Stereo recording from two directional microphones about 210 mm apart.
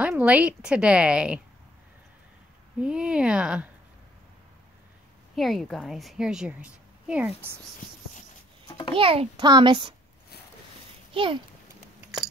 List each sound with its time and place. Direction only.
0.0 s a woman's voice: 5° right (ahead or behind)
2.8 s a woman's voice: 5° right (ahead or behind)
5.3 s a woman's voice: centre (ahead or behind)
8.6 s babbling: 20° left (ahead or behind)
8.9 s a child's voice: 25° right (ahead or behind)
11.1 s a child's voice: 25° right (ahead or behind)